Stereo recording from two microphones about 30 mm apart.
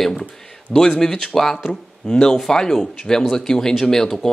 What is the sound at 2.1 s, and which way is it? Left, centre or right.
Speech, left.